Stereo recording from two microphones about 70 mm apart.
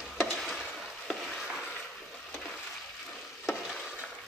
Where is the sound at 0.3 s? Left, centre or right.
Centre.